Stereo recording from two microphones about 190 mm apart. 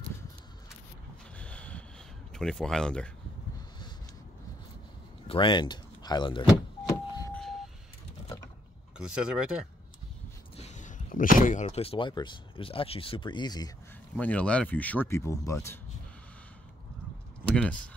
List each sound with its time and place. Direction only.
1.4 s boat: 5° left (ahead or behind)
2.3 s speech: 5° left (ahead or behind)
5.3 s speech: 25° left (ahead or behind)
6.8 s vehicle: 15° left (ahead or behind)
8.9 s speech: 5° right (ahead or behind)
10.5 s speech: 35° left (ahead or behind)
14.1 s speech: 5° left (ahead or behind)
17.5 s speech: 5° left (ahead or behind)